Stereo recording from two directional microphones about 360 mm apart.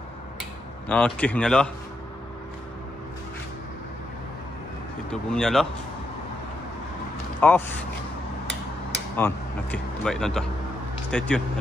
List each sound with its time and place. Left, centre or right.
0.4 s speech: centre
5.1 s speech: centre
7.3 s speech: centre
9.1 s speech: centre